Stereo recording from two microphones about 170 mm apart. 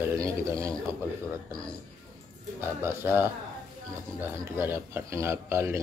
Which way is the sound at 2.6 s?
15° right (ahead or behind).